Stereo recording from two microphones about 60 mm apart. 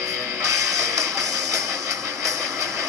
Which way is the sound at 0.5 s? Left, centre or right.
Right.